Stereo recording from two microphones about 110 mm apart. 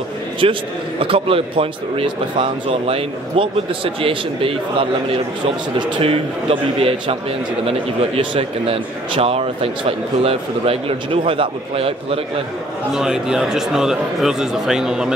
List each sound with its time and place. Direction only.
0.4 s a man's voice: 50° right (ahead or behind)
12.9 s speech: 5° right (ahead or behind)